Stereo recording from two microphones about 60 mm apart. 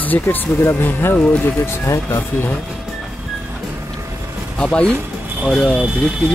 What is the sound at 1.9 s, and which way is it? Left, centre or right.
Speech, left.